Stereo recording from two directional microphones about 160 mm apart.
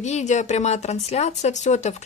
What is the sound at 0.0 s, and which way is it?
Speech, 45° left (ahead or behind).